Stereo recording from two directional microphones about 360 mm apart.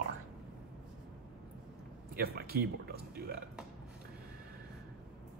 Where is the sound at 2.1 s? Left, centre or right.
Right.